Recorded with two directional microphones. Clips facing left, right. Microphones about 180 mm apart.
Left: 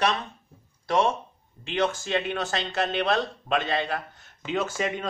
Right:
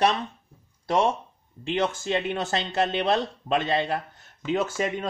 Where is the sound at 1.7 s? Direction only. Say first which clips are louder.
Even; 25° right (ahead or behind).